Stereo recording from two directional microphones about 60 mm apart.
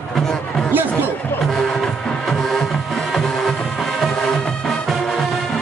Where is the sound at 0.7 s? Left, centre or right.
Right.